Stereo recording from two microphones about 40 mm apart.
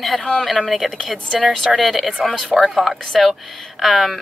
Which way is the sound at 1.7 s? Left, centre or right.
Centre.